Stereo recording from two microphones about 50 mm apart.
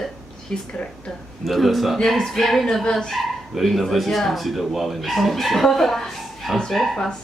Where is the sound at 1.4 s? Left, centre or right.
Centre.